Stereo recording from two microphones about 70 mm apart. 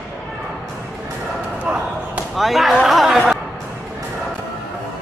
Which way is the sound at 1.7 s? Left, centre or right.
Right.